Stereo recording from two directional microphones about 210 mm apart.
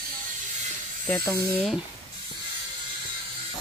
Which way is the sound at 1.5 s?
5° right (ahead or behind).